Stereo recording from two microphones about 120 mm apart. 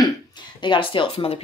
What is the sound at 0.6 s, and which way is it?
Speech, 45° left (ahead or behind).